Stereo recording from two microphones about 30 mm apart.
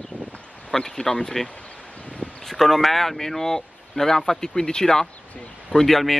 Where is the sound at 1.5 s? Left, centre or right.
Left.